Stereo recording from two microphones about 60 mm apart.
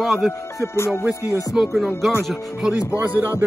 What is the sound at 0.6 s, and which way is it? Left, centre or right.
Music, left.